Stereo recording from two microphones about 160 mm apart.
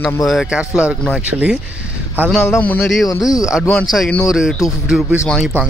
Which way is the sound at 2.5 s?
10° left (ahead or behind).